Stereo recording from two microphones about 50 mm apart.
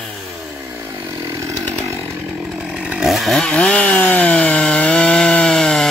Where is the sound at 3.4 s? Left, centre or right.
Centre.